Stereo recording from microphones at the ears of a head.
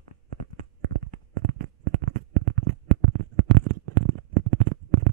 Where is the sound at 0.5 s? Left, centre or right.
Right.